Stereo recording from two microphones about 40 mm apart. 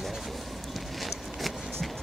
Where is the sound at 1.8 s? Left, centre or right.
Centre.